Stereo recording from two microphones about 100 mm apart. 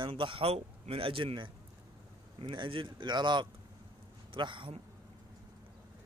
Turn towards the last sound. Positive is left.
turn(degrees=-55)  # may be behind; listen again after turning